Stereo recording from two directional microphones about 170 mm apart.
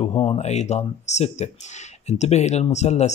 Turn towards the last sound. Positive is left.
turn(degrees=40)  # may be behind; listen again after turning